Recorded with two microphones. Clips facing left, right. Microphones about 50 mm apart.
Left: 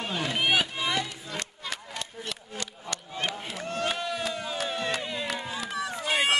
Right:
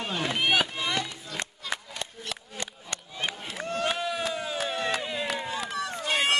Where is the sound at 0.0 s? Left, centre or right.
Centre.